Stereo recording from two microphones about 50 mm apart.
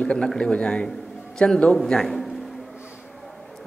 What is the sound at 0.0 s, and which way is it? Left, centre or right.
A woman's voice, centre.